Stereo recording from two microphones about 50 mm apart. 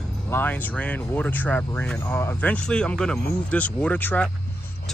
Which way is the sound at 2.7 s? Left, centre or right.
Centre.